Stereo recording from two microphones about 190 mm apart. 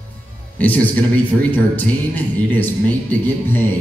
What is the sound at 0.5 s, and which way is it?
A man's voice, 10° left (ahead or behind).